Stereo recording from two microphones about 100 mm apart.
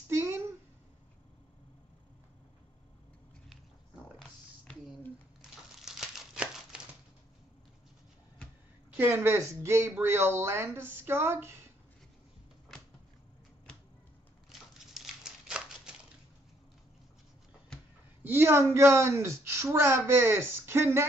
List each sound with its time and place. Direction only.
0.1 s a sound: 25° right (ahead or behind)
5.4 s crumpling: 5° right (ahead or behind)
8.9 s speech: 20° right (ahead or behind)
14.5 s crumpling: 5° right (ahead or behind)
18.2 s speech: 25° right (ahead or behind)